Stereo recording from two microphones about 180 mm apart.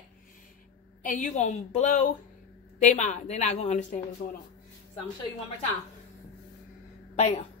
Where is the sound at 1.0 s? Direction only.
45° left (ahead or behind).